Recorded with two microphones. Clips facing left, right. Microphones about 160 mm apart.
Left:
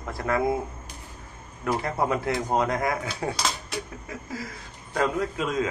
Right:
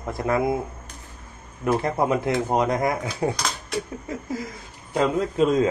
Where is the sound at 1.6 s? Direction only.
20° right (ahead or behind).